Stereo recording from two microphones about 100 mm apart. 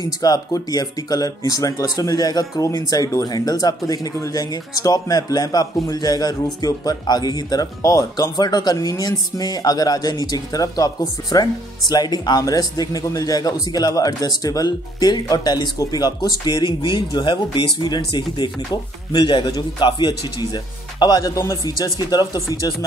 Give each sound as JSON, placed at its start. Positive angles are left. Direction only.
{"t": 0.0, "sound": "speech", "side_deg": 40}
{"t": 21.4, "sound": "speech", "side_deg": 30}
{"t": 21.9, "sound": "speech", "side_deg": 40}